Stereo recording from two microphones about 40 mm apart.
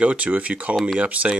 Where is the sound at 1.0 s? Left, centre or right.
Right.